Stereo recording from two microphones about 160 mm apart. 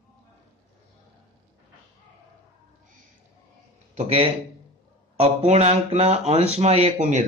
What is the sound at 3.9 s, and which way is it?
Speech, 40° right (ahead or behind).